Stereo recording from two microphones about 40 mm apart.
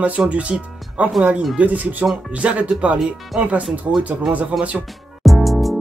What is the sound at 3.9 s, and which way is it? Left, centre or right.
Speech, right.